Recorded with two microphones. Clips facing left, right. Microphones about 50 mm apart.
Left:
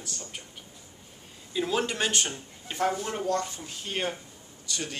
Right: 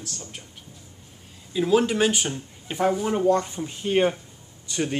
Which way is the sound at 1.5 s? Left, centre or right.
Centre.